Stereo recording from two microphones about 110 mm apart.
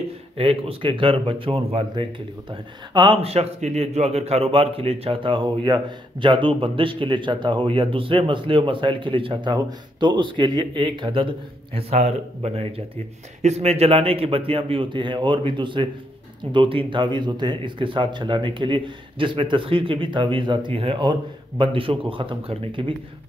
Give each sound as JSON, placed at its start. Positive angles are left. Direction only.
{"t": 0.4, "sound": "speech", "side_deg": -60}
{"t": 2.9, "sound": "a man's voice", "side_deg": -45}
{"t": 3.2, "sound": "a man's voice", "side_deg": -65}
{"t": 11.9, "sound": "a man's voice", "side_deg": -75}